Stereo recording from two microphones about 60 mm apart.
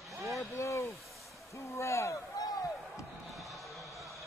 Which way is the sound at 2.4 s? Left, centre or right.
Left.